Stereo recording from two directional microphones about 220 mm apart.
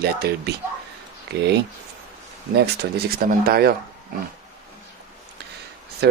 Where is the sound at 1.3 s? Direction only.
50° right (ahead or behind).